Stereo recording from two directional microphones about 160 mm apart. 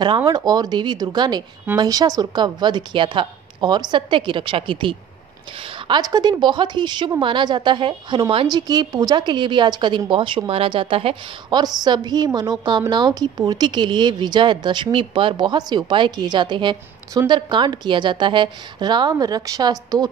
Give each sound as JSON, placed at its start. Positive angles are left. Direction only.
{"t": 0.0, "sound": "a woman's voice", "side_deg": -25}